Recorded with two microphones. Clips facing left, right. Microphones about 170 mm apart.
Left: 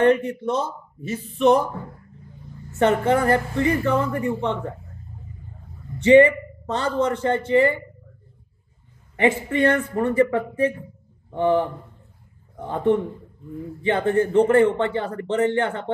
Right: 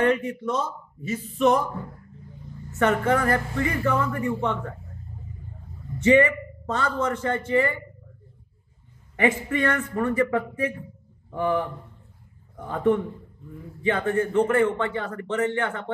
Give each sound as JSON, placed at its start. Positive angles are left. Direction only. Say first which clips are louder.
{"t": 0.0, "sound": "a man's voice", "louder": "left 4 dB", "side_deg": 25}
{"t": 2.8, "sound": "a man's voice", "louder": "left 3 dB", "side_deg": 25}
{"t": 5.9, "sound": "a man's voice", "louder": "left 5 dB", "side_deg": 30}
{"t": 9.2, "sound": "a man's voice", "louder": "left 4 dB", "side_deg": 30}
{"t": 12.6, "sound": "speech", "louder": "left 2 dB", "side_deg": 30}